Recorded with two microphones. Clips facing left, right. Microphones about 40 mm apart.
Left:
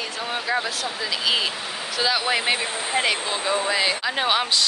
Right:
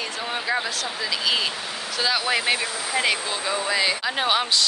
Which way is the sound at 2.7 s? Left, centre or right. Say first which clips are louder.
Left 1 dB; left.